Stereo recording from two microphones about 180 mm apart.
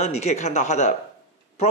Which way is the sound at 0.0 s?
35° left (ahead or behind).